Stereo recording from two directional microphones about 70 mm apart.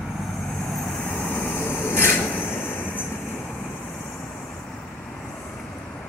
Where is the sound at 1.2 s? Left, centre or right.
Left.